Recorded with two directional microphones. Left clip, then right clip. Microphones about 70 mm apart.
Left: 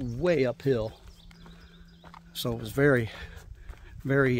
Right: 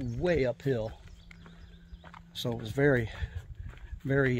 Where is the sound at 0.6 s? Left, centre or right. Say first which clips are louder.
Left 4 dB; left.